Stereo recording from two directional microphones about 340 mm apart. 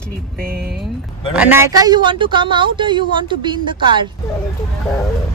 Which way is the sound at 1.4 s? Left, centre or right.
Centre.